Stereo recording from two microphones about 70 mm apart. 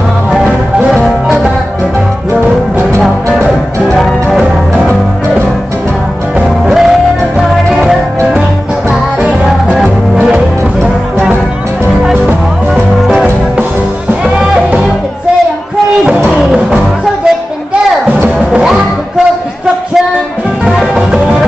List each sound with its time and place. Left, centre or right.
0.3 s music: centre
3.9 s music: centre
6.7 s music: centre
12.7 s music: centre
16.3 s music: centre
18.1 s music: right
18.6 s music: centre
20.6 s music: centre